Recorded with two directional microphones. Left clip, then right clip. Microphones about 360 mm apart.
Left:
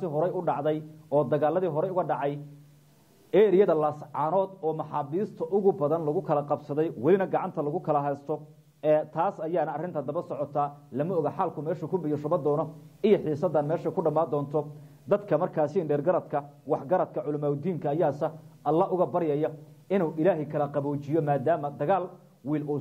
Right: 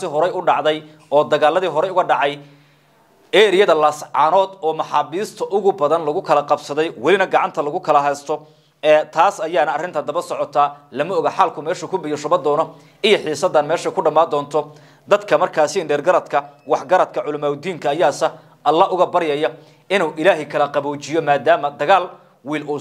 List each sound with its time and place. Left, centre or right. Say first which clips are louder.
0.2 s a man's voice: right 12 dB; centre
5.4 s a man's voice: right 8 dB; centre
5.8 s a man's voice: right 10 dB; centre